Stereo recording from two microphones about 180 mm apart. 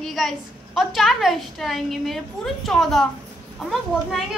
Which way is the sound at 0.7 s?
Centre (ahead or behind).